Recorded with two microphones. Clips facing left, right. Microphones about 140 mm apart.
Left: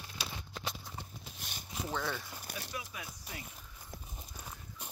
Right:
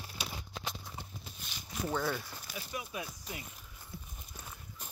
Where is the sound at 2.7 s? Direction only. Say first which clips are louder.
Right 4 dB; 25° right (ahead or behind).